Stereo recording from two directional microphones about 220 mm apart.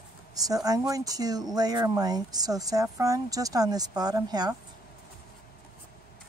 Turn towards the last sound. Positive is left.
turn(degrees=-15)  # may be behind; listen again after turning